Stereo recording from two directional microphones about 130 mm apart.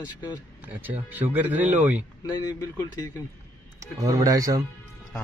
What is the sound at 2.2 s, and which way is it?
Speech, 30° left (ahead or behind).